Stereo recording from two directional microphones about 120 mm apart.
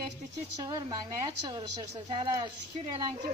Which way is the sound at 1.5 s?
35° right (ahead or behind).